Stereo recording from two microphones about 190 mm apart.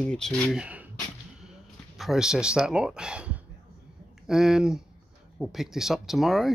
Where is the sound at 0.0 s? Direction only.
5° left (ahead or behind).